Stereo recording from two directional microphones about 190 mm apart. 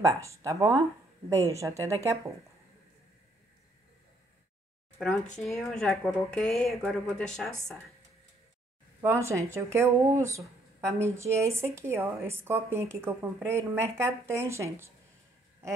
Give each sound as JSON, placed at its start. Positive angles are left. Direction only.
{"t": 0.0, "sound": "speech", "side_deg": -15}
{"t": 4.9, "sound": "speech", "side_deg": 5}
{"t": 9.0, "sound": "speech", "side_deg": -15}